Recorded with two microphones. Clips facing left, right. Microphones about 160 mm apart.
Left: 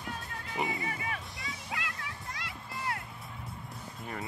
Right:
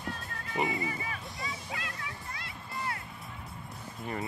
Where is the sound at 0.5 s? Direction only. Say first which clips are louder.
Right 3 dB; centre (ahead or behind).